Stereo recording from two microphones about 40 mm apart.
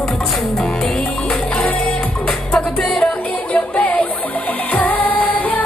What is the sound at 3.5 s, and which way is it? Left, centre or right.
Music, left.